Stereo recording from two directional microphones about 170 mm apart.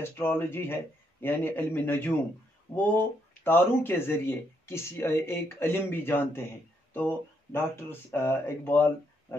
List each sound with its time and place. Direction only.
0.0 s speech: 10° left (ahead or behind)